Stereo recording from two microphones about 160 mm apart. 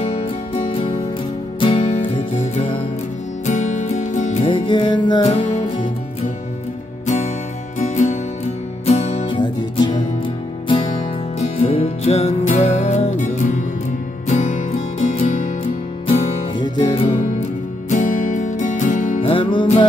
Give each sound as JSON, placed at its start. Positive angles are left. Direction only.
{"t": 0.0, "sound": "music", "side_deg": 35}
{"t": 3.4, "sound": "music", "side_deg": 50}
{"t": 7.8, "sound": "music", "side_deg": 50}
{"t": 9.3, "sound": "music", "side_deg": 30}
{"t": 15.6, "sound": "music", "side_deg": 30}
{"t": 17.8, "sound": "music", "side_deg": 55}
{"t": 19.2, "sound": "music", "side_deg": 30}